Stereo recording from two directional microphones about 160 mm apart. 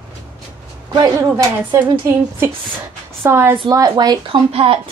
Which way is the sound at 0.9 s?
20° right (ahead or behind).